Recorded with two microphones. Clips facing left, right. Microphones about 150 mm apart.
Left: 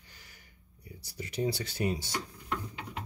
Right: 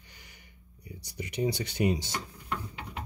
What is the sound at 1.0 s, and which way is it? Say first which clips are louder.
Speech: right 2 dB; 15° right (ahead or behind).